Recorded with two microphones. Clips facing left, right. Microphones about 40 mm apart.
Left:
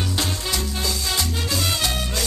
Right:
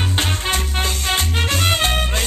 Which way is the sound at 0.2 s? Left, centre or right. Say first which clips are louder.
Right 6 dB; right.